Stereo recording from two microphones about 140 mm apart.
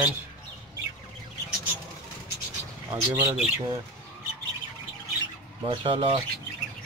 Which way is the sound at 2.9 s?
25° right (ahead or behind).